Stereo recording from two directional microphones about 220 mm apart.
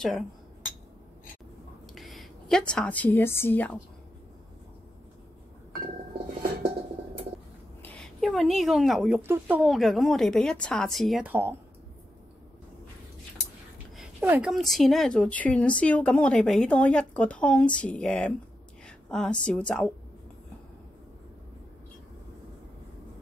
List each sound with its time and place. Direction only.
2.0 s a woman's voice: centre (ahead or behind)
7.8 s speech: 5° left (ahead or behind)
13.9 s speech: 5° right (ahead or behind)
18.9 s a sound: 5° left (ahead or behind)
19.4 s speech: 5° left (ahead or behind)